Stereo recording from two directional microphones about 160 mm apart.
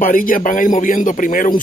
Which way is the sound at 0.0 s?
60° left (ahead or behind).